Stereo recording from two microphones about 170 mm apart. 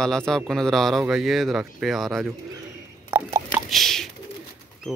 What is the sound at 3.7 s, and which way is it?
Bird, centre (ahead or behind).